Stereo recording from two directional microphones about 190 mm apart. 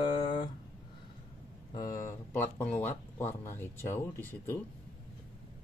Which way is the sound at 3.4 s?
15° left (ahead or behind).